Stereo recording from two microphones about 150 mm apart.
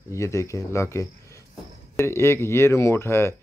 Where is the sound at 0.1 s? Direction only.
20° left (ahead or behind).